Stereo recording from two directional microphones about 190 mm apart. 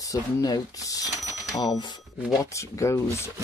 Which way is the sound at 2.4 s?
15° left (ahead or behind).